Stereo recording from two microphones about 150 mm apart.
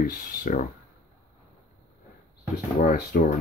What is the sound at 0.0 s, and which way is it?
Speech, 70° left (ahead or behind).